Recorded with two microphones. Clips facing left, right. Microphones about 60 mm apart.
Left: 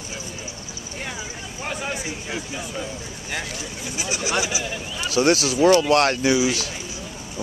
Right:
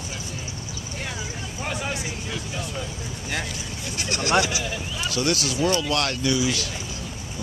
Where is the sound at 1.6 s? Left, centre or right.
Centre.